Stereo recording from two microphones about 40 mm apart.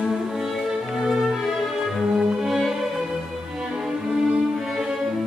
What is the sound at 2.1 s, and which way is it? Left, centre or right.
Violin, centre.